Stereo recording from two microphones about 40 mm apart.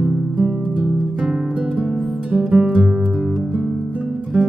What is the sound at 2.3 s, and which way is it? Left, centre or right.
Music, centre.